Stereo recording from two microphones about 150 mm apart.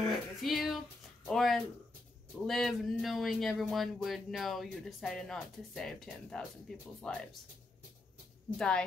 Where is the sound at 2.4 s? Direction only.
Centre (ahead or behind).